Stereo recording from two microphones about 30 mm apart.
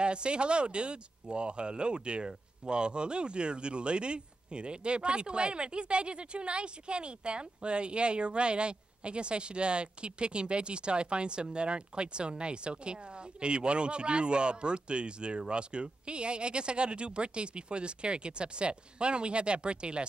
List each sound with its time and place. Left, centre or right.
0.0 s speech: right